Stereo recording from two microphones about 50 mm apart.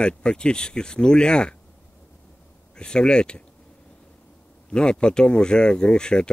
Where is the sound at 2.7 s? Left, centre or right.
Centre.